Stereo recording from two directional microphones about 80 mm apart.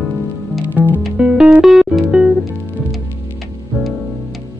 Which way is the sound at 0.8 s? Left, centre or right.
Right.